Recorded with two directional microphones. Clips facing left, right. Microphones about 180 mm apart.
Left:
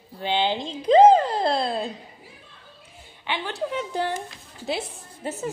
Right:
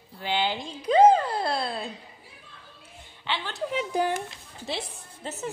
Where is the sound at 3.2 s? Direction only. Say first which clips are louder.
Left 2 dB; 15° left (ahead or behind).